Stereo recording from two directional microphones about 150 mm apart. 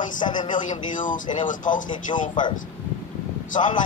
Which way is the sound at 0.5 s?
60° left (ahead or behind).